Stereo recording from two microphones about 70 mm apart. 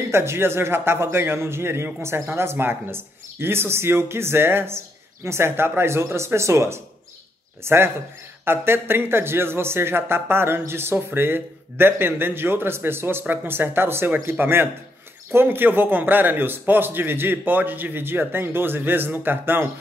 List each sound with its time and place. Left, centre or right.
0.1 s a man's voice: right